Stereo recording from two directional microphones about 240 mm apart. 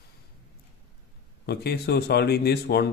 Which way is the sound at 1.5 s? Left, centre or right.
Left.